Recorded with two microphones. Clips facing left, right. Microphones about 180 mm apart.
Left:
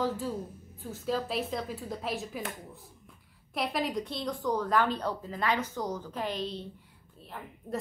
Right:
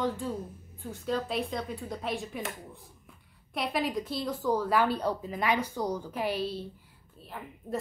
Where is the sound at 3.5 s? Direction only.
Centre (ahead or behind).